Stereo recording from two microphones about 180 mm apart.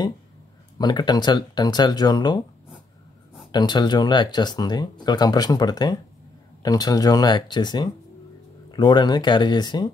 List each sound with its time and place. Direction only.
0.7 s speech: 25° left (ahead or behind)
3.5 s speech: 25° left (ahead or behind)